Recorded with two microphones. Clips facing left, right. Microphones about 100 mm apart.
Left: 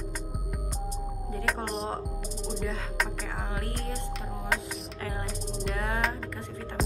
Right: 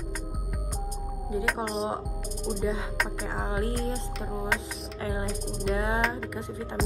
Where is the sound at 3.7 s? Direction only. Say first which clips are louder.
Right 5 dB; 5° right (ahead or behind).